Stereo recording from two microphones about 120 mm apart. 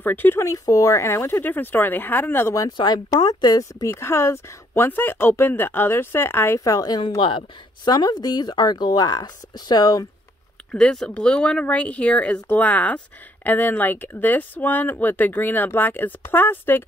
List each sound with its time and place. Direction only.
0.0 s speech: 15° left (ahead or behind); by 10.0 s 35° left (ahead or behind)
10.7 s speech: 5° left (ahead or behind)